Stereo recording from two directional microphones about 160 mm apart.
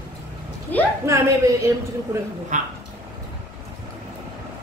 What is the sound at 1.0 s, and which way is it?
Speech, 20° right (ahead or behind).